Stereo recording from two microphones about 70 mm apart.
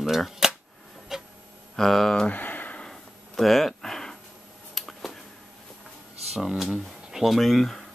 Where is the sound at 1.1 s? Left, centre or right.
Centre.